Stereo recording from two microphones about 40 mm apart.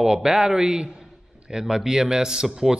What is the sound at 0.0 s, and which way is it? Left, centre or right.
Speech, centre.